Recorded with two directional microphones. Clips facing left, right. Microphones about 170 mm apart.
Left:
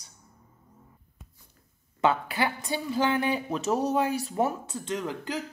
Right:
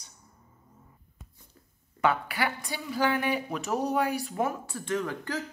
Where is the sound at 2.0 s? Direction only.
25° left (ahead or behind).